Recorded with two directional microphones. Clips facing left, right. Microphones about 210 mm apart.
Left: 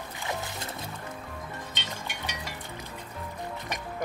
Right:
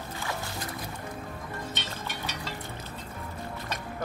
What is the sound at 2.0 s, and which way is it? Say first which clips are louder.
Music: right 1 dB; 15° left (ahead or behind).